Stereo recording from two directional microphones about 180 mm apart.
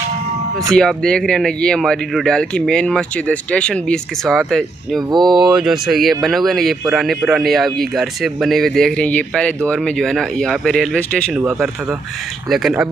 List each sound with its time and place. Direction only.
0.7 s speech: 5° left (ahead or behind)
5.1 s speech: 25° right (ahead or behind)
5.6 s speech: centre (ahead or behind)